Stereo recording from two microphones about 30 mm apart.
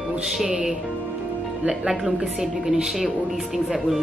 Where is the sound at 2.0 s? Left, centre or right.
Centre.